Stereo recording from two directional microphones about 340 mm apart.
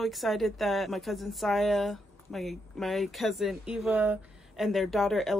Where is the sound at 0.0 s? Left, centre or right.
Centre.